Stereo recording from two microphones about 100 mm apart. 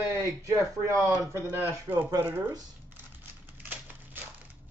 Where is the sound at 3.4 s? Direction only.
20° right (ahead or behind).